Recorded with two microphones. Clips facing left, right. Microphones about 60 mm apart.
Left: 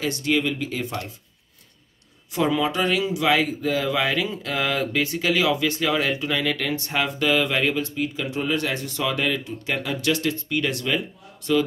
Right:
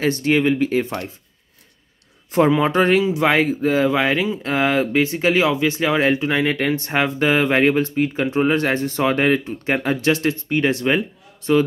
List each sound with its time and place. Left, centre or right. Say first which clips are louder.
0.0 s speech: right 6 dB; right
2.5 s speech: right 6 dB; right